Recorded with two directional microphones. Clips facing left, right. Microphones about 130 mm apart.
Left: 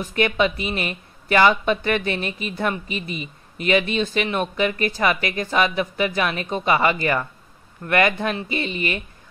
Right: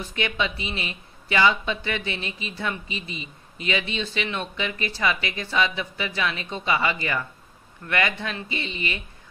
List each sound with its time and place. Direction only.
0.0 s speech: 50° left (ahead or behind)
3.1 s speech: 25° right (ahead or behind)
3.6 s speech: 50° left (ahead or behind)